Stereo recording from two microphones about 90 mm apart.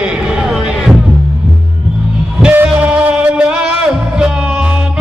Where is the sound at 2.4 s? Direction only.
20° right (ahead or behind).